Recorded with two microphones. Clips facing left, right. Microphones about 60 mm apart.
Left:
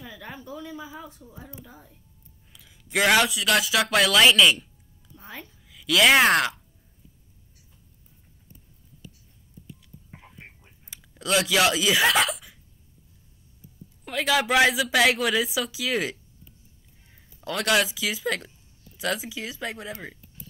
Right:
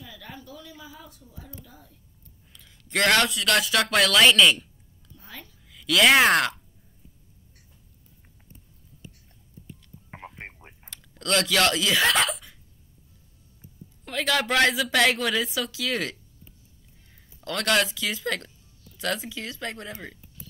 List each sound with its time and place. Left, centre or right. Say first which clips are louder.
0.0 s speech: left 3 dB; left
2.5 s speech: left 1 dB; centre
5.1 s a sound: left 3 dB; left
5.7 s speech: even; centre
10.1 s a sound: right 8 dB; right
10.9 s speech: left 1 dB; centre
14.0 s a woman's voice: left 2 dB; centre
17.1 s a sound: left 1 dB; centre
17.6 s speech: left 1 dB; centre